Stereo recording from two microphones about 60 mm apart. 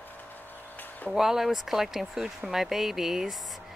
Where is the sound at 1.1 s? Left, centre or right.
Centre.